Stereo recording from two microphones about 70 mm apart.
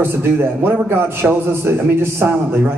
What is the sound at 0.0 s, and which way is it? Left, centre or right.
A man's voice, right.